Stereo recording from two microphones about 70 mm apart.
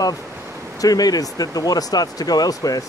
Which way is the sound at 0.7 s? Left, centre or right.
Left.